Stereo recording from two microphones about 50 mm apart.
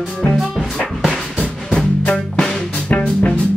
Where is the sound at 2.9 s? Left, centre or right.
Left.